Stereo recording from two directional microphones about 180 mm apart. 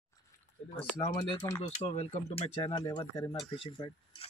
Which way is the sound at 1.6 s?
40° left (ahead or behind).